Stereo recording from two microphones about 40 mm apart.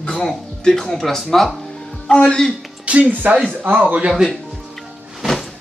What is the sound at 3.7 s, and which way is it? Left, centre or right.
Speech, right.